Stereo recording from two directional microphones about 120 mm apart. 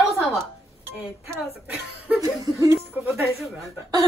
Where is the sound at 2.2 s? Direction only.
25° right (ahead or behind).